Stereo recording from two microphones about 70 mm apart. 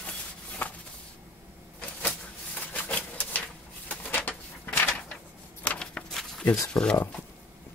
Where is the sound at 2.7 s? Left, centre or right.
Left.